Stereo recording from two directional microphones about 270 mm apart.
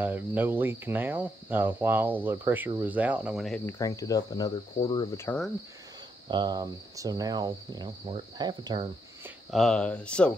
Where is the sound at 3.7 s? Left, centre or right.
Centre.